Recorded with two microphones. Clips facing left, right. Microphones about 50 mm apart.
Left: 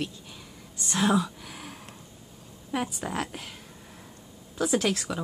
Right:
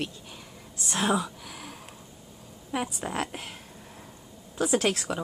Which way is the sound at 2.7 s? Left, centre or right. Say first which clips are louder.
Left 1 dB; centre.